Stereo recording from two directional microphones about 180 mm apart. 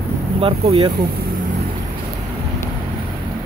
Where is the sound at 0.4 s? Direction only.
35° right (ahead or behind).